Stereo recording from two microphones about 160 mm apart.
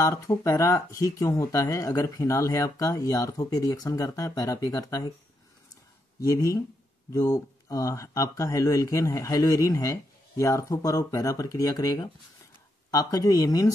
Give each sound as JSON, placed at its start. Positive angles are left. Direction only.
{"t": 0.0, "sound": "speech", "side_deg": 20}
{"t": 6.1, "sound": "speech", "side_deg": 20}